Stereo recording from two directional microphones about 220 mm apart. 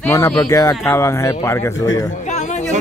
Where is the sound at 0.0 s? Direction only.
15° left (ahead or behind).